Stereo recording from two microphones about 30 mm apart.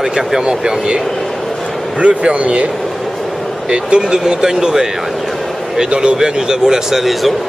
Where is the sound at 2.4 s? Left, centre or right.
Right.